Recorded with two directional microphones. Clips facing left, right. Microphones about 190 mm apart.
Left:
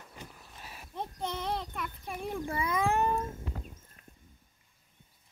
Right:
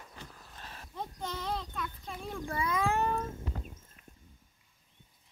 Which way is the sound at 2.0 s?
15° left (ahead or behind).